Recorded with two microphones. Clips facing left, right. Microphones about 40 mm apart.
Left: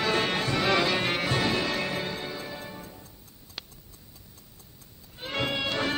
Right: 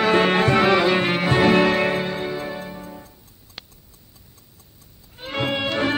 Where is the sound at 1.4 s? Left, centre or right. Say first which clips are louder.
Right 11 dB; right.